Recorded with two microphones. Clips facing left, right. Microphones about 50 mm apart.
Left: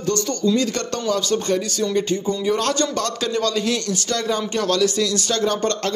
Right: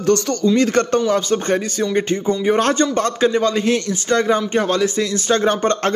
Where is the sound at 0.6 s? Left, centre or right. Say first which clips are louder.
Right 7 dB; right.